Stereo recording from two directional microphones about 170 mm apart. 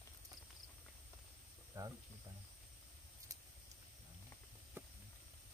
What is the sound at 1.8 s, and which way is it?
Insect, 15° right (ahead or behind).